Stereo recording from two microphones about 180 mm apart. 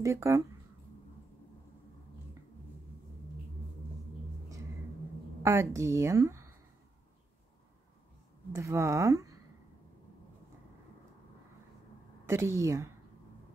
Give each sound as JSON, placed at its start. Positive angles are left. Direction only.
{"t": 0.0, "sound": "a woman's voice", "side_deg": -15}
{"t": 5.4, "sound": "a woman's voice", "side_deg": -15}
{"t": 8.5, "sound": "a woman's voice", "side_deg": -15}
{"t": 12.3, "sound": "a woman's voice", "side_deg": -15}